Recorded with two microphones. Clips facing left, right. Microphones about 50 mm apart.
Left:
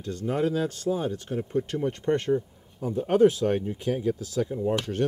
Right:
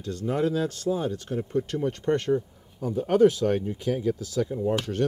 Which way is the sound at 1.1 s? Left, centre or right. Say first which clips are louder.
Even; left.